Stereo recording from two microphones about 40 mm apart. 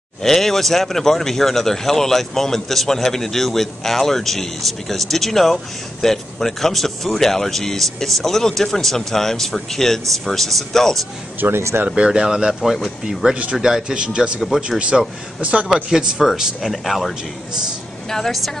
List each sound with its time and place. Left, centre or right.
0.2 s speech: centre
11.3 s speech: right
11.9 s speech: centre
14.9 s speech: centre
15.4 s a man's voice: right
15.9 s speech: centre